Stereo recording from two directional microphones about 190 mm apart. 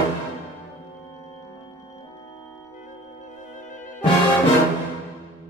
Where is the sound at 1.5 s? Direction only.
15° left (ahead or behind).